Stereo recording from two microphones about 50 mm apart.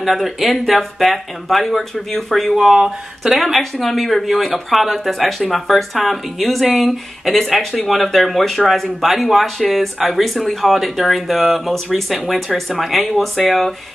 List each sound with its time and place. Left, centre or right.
0.0 s speech: centre
2.5 s speech: centre